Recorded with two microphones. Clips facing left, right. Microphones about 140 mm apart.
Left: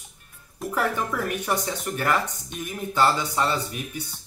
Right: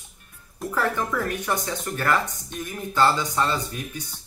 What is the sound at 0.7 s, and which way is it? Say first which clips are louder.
Speech: even; 15° left (ahead or behind).